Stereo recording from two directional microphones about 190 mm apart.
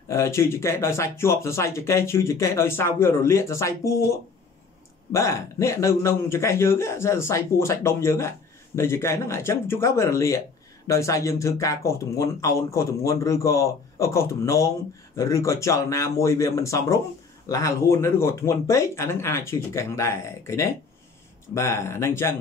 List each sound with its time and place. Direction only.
0.1 s speech: 15° left (ahead or behind)